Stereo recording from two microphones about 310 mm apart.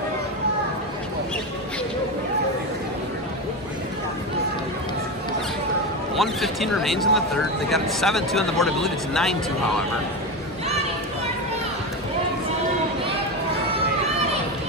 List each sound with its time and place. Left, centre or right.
6.1 s speech: centre